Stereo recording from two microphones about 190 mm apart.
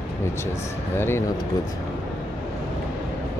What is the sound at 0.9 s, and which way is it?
Speech, 10° left (ahead or behind).